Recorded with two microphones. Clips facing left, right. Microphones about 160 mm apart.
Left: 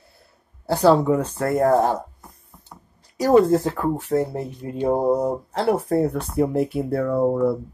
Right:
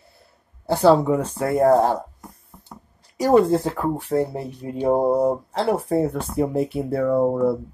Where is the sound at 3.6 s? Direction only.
15° right (ahead or behind).